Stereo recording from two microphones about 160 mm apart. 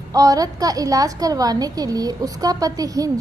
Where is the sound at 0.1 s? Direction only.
20° right (ahead or behind).